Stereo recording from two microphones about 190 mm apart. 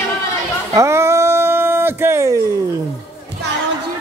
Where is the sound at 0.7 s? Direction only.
15° right (ahead or behind).